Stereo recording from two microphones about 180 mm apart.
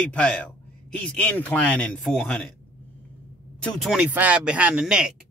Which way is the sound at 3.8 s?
5° right (ahead or behind).